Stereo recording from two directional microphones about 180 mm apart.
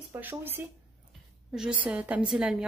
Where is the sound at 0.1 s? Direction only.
10° right (ahead or behind).